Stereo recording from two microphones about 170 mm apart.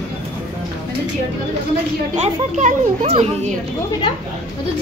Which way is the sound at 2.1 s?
45° right (ahead or behind).